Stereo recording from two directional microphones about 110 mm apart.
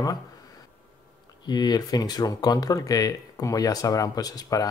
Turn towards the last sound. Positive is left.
turn(degrees=35)  # may be behind; listen again after turning